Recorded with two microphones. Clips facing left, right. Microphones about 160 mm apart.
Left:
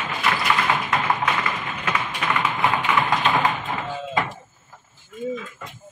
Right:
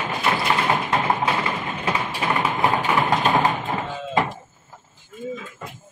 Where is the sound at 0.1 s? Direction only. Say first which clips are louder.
Right 1 dB; 30° right (ahead or behind).